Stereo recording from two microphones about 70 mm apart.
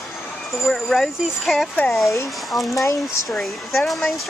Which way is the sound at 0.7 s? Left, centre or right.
Centre.